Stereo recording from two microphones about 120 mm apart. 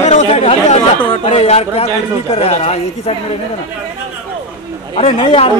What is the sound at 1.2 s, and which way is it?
A woman's voice, 65° left (ahead or behind).